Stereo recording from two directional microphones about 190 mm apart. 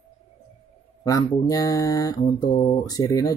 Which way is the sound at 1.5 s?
20° left (ahead or behind).